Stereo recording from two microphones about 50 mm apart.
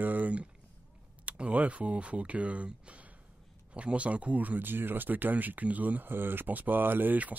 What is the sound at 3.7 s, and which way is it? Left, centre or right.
Speech, right.